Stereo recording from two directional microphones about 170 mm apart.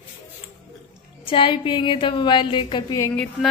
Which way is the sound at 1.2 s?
30° left (ahead or behind).